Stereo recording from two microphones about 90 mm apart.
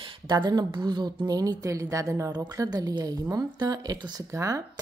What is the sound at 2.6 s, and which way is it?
Speech, 45° right (ahead or behind).